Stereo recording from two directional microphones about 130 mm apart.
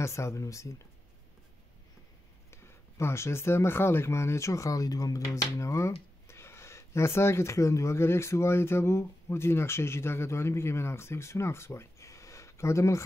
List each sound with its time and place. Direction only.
0.0 s speech: 20° left (ahead or behind)
2.5 s speech: 20° left (ahead or behind)